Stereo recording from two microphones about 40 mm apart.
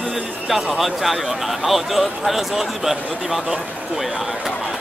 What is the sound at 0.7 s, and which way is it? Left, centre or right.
Speech, centre.